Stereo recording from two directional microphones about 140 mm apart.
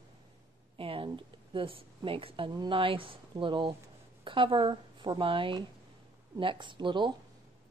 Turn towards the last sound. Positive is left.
turn(degrees=-35)  # may be behind; listen again after turning